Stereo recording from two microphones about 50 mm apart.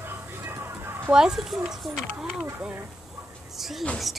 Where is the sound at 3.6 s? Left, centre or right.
Centre.